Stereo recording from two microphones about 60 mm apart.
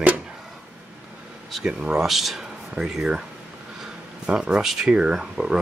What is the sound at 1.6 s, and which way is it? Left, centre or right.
Speech, centre.